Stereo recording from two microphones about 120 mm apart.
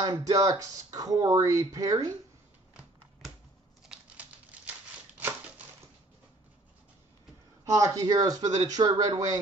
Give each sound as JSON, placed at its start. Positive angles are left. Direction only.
{"t": 0.0, "sound": "speech", "side_deg": -30}
{"t": 3.9, "sound": "crumpling", "side_deg": -10}
{"t": 7.6, "sound": "speech", "side_deg": -30}